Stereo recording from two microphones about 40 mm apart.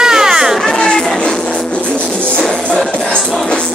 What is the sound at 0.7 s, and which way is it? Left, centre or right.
Music, centre.